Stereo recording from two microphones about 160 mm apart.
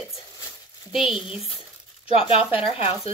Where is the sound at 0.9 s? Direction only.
Centre (ahead or behind).